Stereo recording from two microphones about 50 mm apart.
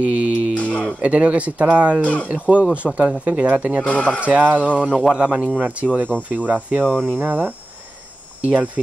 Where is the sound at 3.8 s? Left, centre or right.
Left.